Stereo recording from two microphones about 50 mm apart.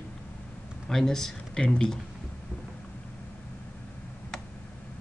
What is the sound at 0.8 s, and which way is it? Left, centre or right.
Speech, centre.